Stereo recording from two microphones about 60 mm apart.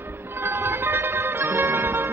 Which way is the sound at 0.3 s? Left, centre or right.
Right.